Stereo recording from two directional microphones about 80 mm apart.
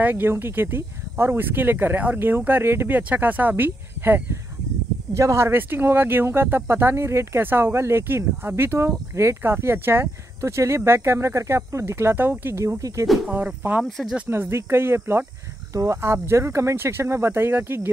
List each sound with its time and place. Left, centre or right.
0.0 s speech: right
5.1 s speech: right
13.3 s speech: centre
13.8 s speech: centre
14.3 s speech: right
15.7 s speech: right
16.0 s speech: right